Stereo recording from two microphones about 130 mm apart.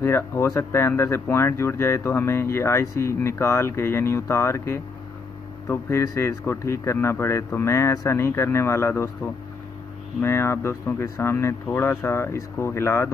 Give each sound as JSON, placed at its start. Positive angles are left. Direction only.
{"t": 0.0, "sound": "speech", "side_deg": 20}